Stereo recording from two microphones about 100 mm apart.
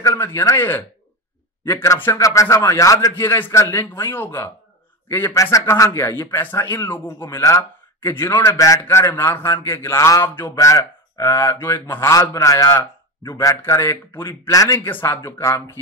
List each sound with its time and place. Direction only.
0.0 s a man's voice: 25° left (ahead or behind)
3.3 s a man's voice: 20° left (ahead or behind)
10.2 s a man's voice: 20° left (ahead or behind)
14.5 s speech: 35° left (ahead or behind)
14.8 s a man's voice: 20° left (ahead or behind)